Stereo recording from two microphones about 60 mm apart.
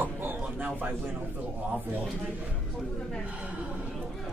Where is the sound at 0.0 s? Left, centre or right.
Right.